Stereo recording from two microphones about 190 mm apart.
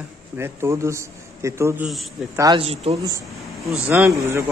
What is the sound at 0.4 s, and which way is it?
A man's voice, 15° right (ahead or behind).